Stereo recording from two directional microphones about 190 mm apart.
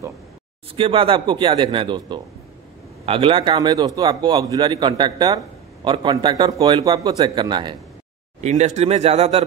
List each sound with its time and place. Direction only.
0.7 s a man's voice: 30° right (ahead or behind)
8.4 s speech: 35° right (ahead or behind)